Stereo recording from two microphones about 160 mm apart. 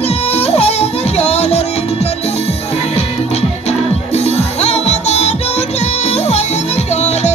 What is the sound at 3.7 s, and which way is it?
Music, 40° left (ahead or behind).